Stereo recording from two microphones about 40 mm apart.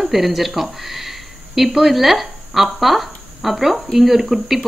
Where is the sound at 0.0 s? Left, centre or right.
Centre.